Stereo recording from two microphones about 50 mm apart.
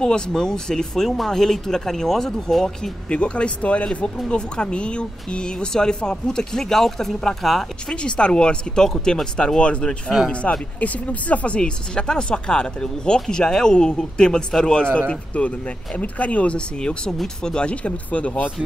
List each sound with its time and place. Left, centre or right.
0.0 s speech: centre
3.1 s speech: left; by 7.6 s centre
7.9 s speech: centre
10.8 s speech: left